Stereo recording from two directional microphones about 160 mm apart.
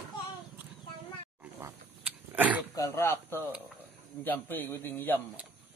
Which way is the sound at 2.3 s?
10° right (ahead or behind).